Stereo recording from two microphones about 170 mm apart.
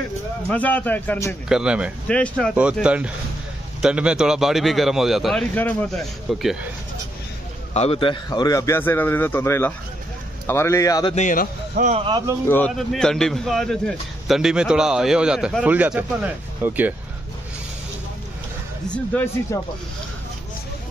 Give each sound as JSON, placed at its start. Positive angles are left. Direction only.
{"t": 0.5, "sound": "a man's voice", "side_deg": 10}
{"t": 1.5, "sound": "speech", "side_deg": -5}
{"t": 2.0, "sound": "a man's voice", "side_deg": 5}
{"t": 2.5, "sound": "speech", "side_deg": -5}
{"t": 7.7, "sound": "a man's voice", "side_deg": 35}
{"t": 11.1, "sound": "speech", "side_deg": 50}
{"t": 11.9, "sound": "speech", "side_deg": -30}
{"t": 12.4, "sound": "speech", "side_deg": 10}
{"t": 19.5, "sound": "a man's voice", "side_deg": 20}